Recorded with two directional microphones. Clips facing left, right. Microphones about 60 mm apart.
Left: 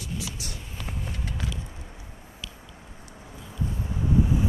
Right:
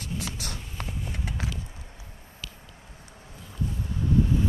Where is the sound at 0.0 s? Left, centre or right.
Right.